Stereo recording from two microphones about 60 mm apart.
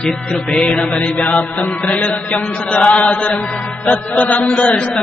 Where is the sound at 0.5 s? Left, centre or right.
Centre.